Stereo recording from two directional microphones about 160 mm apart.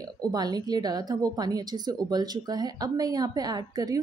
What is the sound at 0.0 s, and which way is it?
A woman's voice, 25° right (ahead or behind).